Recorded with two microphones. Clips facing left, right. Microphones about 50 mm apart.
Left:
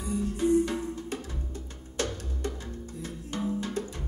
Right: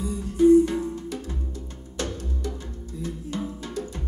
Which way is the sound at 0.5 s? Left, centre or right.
Right.